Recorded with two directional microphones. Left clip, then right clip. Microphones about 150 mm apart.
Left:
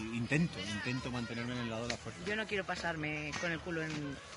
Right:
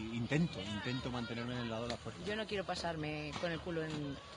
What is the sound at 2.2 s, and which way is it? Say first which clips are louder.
A man's voice: left 3 dB; 40° right (ahead or behind).